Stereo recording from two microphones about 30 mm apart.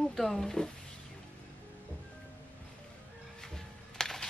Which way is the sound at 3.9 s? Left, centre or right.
Centre.